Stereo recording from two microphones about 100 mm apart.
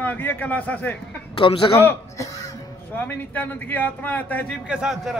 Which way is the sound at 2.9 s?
15° left (ahead or behind).